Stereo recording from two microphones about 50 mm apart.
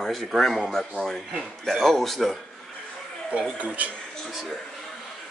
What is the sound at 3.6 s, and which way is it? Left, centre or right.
Speech, right.